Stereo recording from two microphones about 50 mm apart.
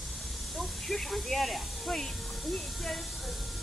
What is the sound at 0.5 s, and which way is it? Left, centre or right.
Snake, centre.